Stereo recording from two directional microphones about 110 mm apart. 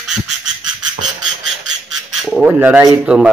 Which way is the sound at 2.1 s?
Centre (ahead or behind).